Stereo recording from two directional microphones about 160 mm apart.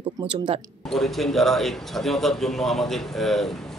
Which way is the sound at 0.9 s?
Centre (ahead or behind).